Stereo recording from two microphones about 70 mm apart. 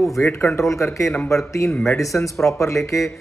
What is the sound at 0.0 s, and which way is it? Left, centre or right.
Speech, centre.